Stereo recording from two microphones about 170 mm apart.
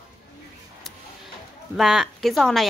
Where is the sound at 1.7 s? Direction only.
Centre (ahead or behind).